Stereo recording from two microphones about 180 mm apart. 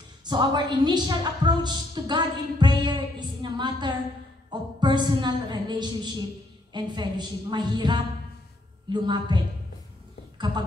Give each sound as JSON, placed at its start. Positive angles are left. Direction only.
{"t": 0.2, "sound": "a woman's voice", "side_deg": -25}